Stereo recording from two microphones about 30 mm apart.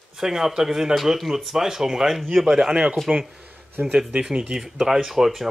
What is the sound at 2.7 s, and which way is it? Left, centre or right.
Speech, right.